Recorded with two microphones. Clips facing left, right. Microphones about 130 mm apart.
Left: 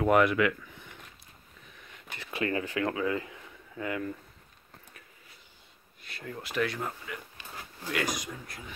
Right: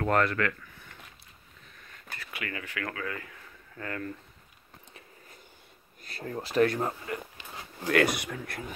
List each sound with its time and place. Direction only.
0.0 s speech: 15° left (ahead or behind)
1.9 s a sound: 20° left (ahead or behind)
2.3 s speech: 30° left (ahead or behind); by 4.1 s 10° left (ahead or behind)
6.0 s speech: 40° right (ahead or behind)
7.8 s speech: 60° right (ahead or behind)